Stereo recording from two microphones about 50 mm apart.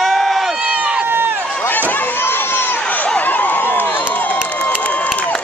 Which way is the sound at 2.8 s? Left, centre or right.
Left.